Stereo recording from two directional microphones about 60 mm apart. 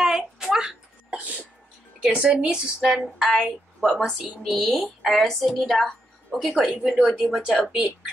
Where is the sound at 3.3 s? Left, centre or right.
Centre.